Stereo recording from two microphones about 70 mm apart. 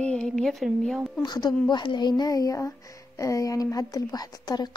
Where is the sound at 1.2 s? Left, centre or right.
Left.